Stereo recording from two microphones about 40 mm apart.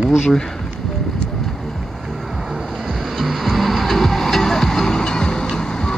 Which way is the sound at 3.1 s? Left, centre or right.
Centre.